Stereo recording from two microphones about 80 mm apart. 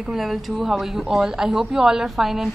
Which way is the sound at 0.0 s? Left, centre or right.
Centre.